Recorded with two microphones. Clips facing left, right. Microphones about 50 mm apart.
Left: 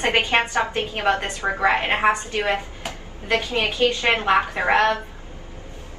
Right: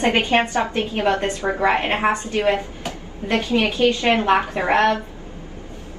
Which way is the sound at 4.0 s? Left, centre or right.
Left.